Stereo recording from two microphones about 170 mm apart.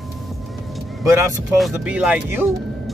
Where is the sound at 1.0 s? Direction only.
15° right (ahead or behind).